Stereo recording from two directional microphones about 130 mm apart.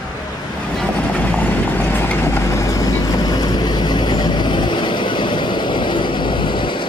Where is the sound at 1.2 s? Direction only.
15° left (ahead or behind).